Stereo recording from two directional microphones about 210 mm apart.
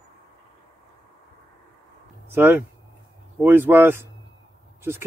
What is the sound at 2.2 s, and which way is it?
Speech, 10° right (ahead or behind).